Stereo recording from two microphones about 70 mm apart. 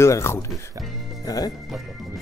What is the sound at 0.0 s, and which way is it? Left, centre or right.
Speech, left.